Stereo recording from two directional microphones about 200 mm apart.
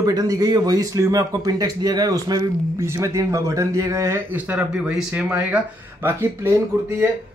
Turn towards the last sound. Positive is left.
turn(degrees=-15)  # may be behind; listen again after turning